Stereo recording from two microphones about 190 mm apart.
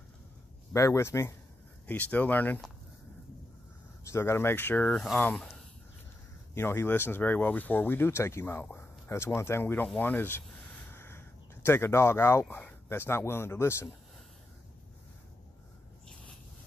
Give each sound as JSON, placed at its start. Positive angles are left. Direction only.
{"t": 0.7, "sound": "speech", "side_deg": 15}
{"t": 4.1, "sound": "speech", "side_deg": 15}